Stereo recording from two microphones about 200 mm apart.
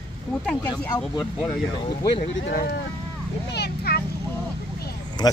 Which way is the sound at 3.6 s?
50° left (ahead or behind).